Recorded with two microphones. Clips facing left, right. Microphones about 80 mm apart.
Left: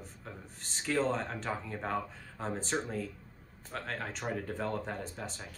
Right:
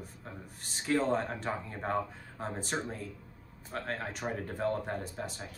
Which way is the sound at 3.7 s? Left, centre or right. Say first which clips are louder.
Right 2 dB; right.